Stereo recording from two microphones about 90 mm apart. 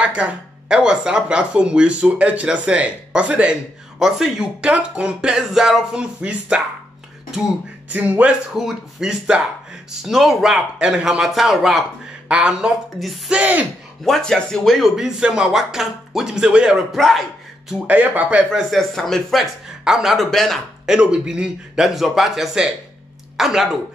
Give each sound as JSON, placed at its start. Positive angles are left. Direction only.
{"t": 0.0, "sound": "speech", "side_deg": -10}
{"t": 7.9, "sound": "speech", "side_deg": -15}
{"t": 8.5, "sound": "speech", "side_deg": -5}
{"t": 13.3, "sound": "speech", "side_deg": -15}
{"t": 14.0, "sound": "speech", "side_deg": 5}
{"t": 17.6, "sound": "speech", "side_deg": -10}
{"t": 18.5, "sound": "speech", "side_deg": 0}